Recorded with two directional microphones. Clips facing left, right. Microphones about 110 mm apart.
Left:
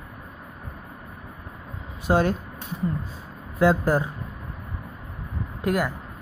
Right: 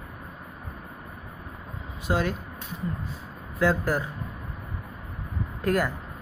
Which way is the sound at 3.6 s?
30° left (ahead or behind).